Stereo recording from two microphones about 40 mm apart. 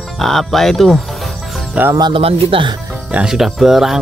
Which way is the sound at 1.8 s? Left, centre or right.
Right.